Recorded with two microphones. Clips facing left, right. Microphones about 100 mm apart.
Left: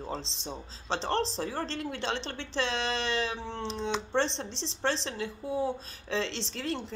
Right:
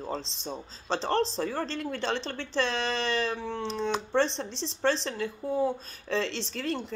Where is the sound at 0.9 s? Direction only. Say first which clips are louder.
Right 3 dB; 20° left (ahead or behind).